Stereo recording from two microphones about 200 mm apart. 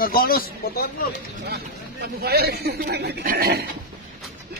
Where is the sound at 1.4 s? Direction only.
55° right (ahead or behind).